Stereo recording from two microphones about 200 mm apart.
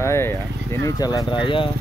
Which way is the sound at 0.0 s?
15° left (ahead or behind).